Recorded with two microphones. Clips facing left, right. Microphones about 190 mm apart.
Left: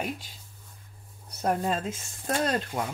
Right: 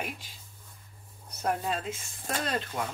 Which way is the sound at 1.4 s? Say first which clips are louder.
Left 3 dB; 45° left (ahead or behind).